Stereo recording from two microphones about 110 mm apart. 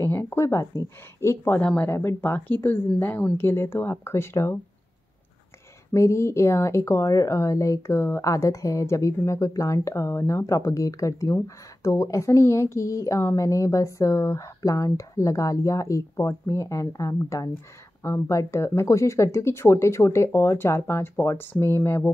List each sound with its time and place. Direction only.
0.0 s a woman's voice: 20° left (ahead or behind)
5.9 s a woman's voice: 25° left (ahead or behind)